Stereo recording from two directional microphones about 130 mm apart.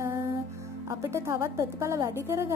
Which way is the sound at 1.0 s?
20° right (ahead or behind).